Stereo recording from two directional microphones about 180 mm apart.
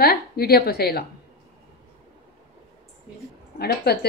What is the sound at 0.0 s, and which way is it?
A woman's voice, 60° left (ahead or behind).